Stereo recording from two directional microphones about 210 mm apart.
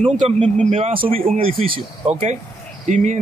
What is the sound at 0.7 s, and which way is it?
Speech, 30° right (ahead or behind).